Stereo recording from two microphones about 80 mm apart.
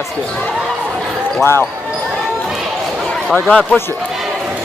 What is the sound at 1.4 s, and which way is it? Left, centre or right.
Speech, left.